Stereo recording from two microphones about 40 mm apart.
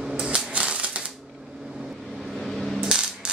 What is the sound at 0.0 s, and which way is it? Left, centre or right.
Typewriter, centre.